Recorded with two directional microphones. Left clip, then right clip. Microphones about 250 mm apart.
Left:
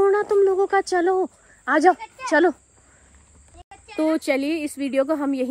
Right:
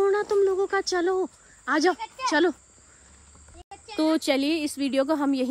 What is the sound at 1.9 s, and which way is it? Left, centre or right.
Speech, centre.